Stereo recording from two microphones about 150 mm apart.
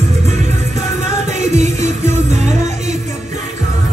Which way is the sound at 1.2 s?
50° right (ahead or behind).